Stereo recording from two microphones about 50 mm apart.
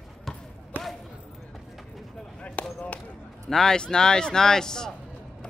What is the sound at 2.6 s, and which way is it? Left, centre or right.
Basketball bounce, left.